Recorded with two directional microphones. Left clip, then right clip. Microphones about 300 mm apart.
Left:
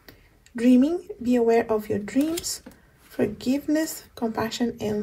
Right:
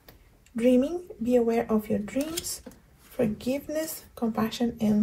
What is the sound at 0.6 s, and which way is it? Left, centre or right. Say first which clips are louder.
Speech: left 2 dB; left.